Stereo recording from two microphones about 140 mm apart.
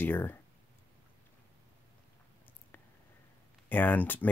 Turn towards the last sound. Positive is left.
turn(degrees=15)  # may be behind; listen again after turning